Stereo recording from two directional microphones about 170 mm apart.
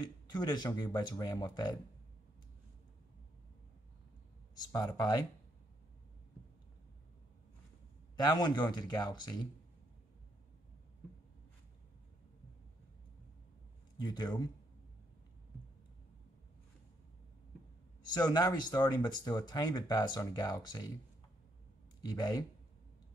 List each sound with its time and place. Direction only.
0.0 s speech: 25° left (ahead or behind)
4.6 s speech: 20° left (ahead or behind)
8.2 s speech: 25° left (ahead or behind)
13.9 s speech: 25° left (ahead or behind)
18.0 s speech: 25° left (ahead or behind)
22.0 s speech: 25° left (ahead or behind)